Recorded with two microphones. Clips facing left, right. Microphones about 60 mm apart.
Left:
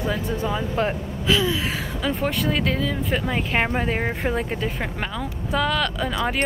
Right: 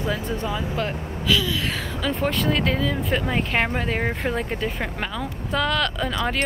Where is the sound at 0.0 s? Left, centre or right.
Centre.